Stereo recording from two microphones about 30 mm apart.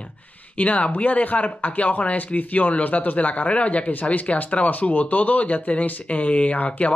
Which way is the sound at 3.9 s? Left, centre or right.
Left.